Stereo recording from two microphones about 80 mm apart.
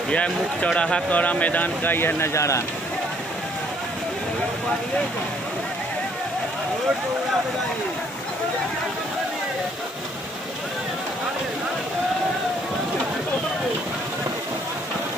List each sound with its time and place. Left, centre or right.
0.1 s speech: centre; by 2.6 s left